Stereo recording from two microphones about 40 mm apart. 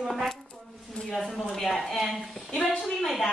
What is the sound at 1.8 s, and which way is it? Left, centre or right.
A woman's voice, centre.